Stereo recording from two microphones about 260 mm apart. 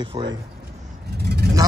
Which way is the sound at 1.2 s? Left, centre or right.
Right.